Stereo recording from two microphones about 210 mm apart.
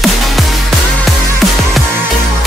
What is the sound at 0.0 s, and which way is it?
Music, centre (ahead or behind).